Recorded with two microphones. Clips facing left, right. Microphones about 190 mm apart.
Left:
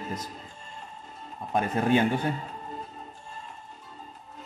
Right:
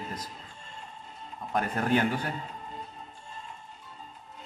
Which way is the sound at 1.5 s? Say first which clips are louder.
Left 3 dB; 20° left (ahead or behind).